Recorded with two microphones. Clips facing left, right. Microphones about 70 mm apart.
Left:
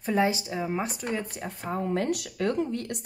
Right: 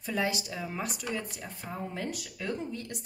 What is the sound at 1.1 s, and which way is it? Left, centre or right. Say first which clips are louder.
Speech: left 4 dB; left.